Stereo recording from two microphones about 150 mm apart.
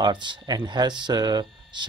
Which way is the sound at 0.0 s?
30° right (ahead or behind).